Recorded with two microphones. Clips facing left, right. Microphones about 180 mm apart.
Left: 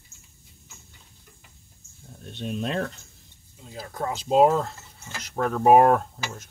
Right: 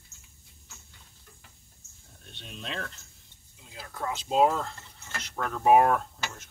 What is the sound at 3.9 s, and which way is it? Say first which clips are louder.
Speech: left 5 dB; 40° left (ahead or behind).